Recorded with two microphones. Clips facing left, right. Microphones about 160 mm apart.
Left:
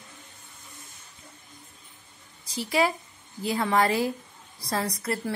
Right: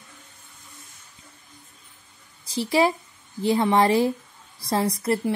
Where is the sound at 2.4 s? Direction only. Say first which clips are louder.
Right 4 dB; 30° right (ahead or behind).